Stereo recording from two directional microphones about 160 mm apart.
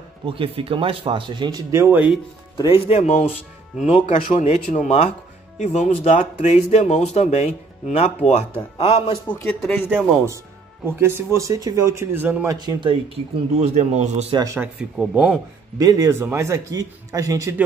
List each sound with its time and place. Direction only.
0.3 s speech: 35° right (ahead or behind); by 2.0 s 15° right (ahead or behind)
2.5 s speech: 35° left (ahead or behind)
9.6 s a man's voice: 10° left (ahead or behind)
9.8 s speech: 15° right (ahead or behind)
12.5 s speech: 30° right (ahead or behind)
13.6 s a man's voice: 45° right (ahead or behind)
14.3 s speech: 25° right (ahead or behind)
14.6 s speech: 5° right (ahead or behind)
15.8 s speech: 20° right (ahead or behind)